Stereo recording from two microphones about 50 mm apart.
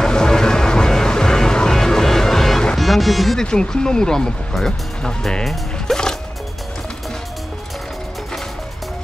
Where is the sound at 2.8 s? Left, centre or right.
Centre.